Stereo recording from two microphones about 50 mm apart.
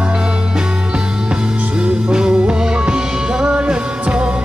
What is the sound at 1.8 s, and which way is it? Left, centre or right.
Music, centre.